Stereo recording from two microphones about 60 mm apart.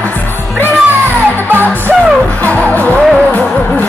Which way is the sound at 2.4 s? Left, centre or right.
Left.